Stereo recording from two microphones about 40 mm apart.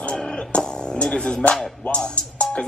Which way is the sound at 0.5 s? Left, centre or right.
Left.